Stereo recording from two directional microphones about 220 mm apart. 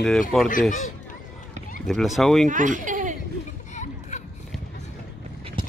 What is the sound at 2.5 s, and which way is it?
Speech, 35° right (ahead or behind).